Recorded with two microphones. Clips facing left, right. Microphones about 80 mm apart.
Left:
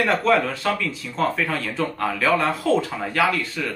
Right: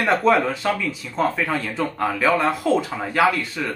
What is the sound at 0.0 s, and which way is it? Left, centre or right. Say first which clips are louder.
Speech: right 1 dB; centre.